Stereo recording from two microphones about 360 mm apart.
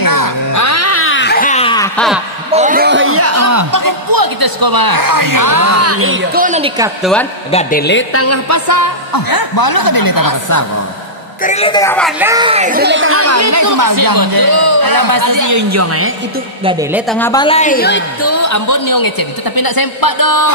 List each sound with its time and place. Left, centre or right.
0.0 s music: left; by 1.9 s centre
2.5 s music: right
7.0 s speech: centre
7.5 s a woman's voice: left
11.4 s a woman's voice: centre
12.2 s speech: centre; by 16.1 s right
16.6 s a woman's voice: centre
17.1 s a woman's voice: centre; by 18.0 s left
18.2 s a woman's voice: left